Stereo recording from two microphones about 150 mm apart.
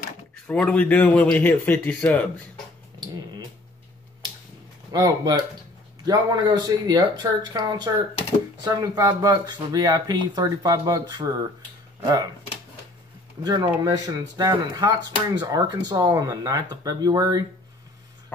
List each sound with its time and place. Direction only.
0.5 s speech: 5° left (ahead or behind)
4.9 s speech: 25° right (ahead or behind)
13.4 s speech: 25° right (ahead or behind)